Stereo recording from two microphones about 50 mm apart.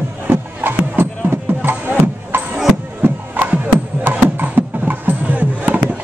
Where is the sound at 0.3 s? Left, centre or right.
Right.